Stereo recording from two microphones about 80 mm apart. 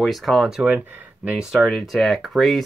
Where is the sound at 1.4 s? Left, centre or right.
Centre.